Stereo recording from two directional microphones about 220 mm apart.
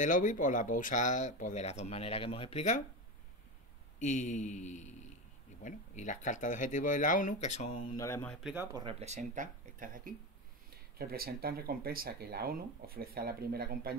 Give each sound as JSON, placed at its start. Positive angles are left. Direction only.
{"t": 0.0, "sound": "speech", "side_deg": 35}
{"t": 4.0, "sound": "speech", "side_deg": 35}
{"t": 7.9, "sound": "speech", "side_deg": 15}
{"t": 8.4, "sound": "speech", "side_deg": -5}
{"t": 8.7, "sound": "speech", "side_deg": -25}